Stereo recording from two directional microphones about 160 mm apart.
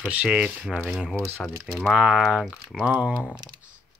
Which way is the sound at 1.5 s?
20° right (ahead or behind).